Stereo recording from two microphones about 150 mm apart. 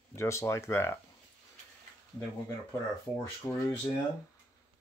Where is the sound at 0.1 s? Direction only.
20° left (ahead or behind).